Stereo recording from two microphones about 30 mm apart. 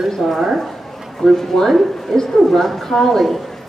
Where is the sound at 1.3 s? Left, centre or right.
Centre.